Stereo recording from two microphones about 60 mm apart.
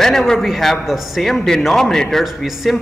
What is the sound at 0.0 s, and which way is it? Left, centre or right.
A man's voice, centre.